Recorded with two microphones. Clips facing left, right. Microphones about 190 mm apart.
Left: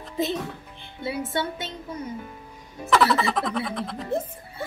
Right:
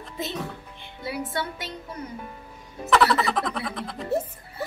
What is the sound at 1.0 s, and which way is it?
Music, 25° left (ahead or behind).